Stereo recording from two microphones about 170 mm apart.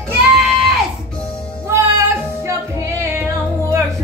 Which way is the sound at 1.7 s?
15° right (ahead or behind).